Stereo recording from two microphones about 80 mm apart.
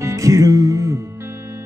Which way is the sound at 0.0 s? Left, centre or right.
Right.